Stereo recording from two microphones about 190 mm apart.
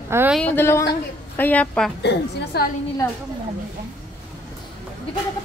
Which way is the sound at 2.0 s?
55° left (ahead or behind).